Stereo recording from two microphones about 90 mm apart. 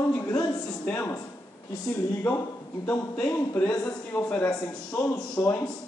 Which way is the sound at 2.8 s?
20° left (ahead or behind).